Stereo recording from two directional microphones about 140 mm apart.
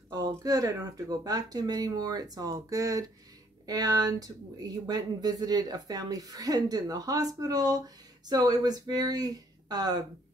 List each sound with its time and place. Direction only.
0.1 s speech: 25° right (ahead or behind)